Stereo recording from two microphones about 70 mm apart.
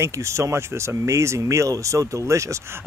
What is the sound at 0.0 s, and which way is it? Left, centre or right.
Speech, right.